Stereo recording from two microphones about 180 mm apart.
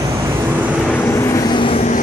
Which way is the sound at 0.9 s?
15° left (ahead or behind).